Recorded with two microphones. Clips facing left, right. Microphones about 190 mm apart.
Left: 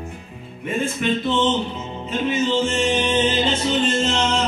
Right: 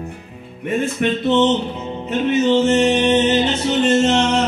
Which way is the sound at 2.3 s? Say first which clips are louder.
Right 7 dB; 65° right (ahead or behind).